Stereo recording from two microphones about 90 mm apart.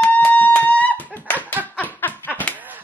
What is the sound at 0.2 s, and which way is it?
Fire alarm, 20° left (ahead or behind).